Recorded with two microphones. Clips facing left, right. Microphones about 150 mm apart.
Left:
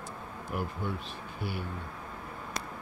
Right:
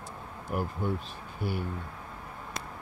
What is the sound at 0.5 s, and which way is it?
Speech, 40° right (ahead or behind).